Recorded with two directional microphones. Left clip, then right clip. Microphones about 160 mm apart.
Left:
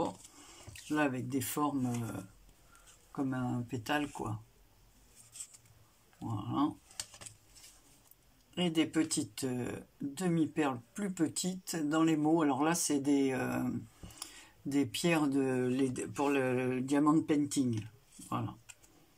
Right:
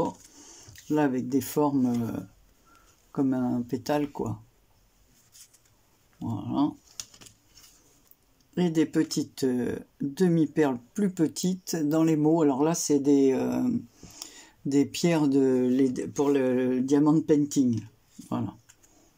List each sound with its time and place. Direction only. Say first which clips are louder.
0.8 s speech: right 7 dB; 40° right (ahead or behind)
3.3 s speech: right 10 dB; 35° right (ahead or behind)
6.1 s speech: right 6 dB; 30° right (ahead or behind)
8.5 s speech: right 6 dB; 35° right (ahead or behind)